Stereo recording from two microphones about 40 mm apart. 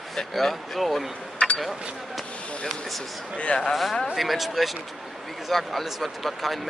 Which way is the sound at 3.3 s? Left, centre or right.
Left.